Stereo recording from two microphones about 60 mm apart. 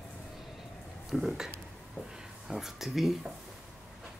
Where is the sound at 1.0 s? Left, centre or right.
Centre.